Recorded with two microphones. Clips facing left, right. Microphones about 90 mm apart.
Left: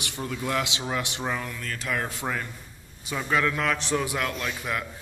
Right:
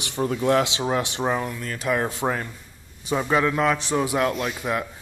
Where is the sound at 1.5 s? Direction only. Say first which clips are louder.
Right 6 dB; 20° right (ahead or behind).